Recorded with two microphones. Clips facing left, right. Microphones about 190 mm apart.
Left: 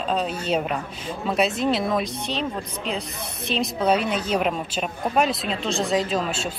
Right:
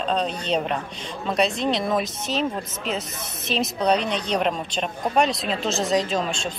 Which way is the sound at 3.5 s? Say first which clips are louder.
Even; centre (ahead or behind).